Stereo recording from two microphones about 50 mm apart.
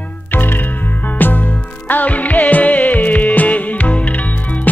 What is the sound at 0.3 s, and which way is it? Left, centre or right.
Music, left.